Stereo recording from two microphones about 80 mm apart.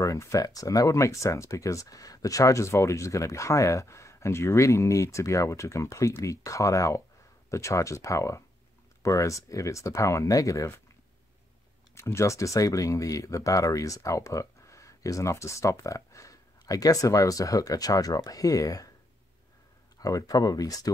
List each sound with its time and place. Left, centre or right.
0.0 s speech: left
11.9 s speech: left
20.0 s speech: left